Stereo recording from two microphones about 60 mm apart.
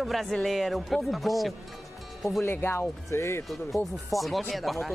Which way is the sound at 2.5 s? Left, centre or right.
Left.